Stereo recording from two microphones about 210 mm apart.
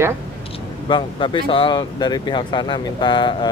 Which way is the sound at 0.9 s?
25° left (ahead or behind).